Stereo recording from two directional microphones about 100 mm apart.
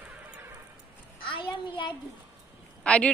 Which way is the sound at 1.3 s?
55° left (ahead or behind).